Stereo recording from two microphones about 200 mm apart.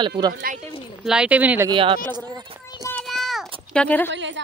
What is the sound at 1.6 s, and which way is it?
Speech, 25° right (ahead or behind).